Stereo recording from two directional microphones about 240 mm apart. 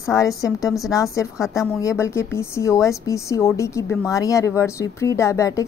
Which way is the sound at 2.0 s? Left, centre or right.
Centre.